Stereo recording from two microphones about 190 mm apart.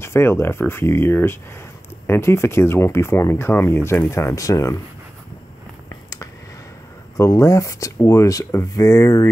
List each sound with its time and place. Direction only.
0.0 s speech: 15° left (ahead or behind)
7.2 s speech: 15° left (ahead or behind)